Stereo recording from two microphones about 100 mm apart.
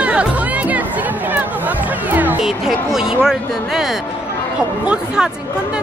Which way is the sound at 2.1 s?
20° right (ahead or behind).